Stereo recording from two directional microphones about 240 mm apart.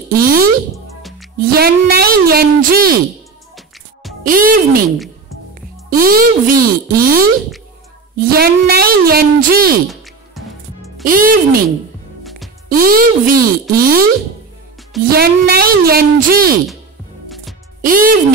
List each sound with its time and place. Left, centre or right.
0.1 s a woman's voice: right
4.2 s a woman's voice: right
9.8 s music: centre
11.1 s a woman's voice: right
12.2 s music: centre
12.6 s a woman's voice: right
15.0 s a woman's voice: right
17.8 s a woman's voice: right